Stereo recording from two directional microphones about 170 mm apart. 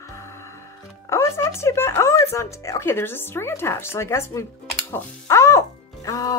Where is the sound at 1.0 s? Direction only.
15° left (ahead or behind).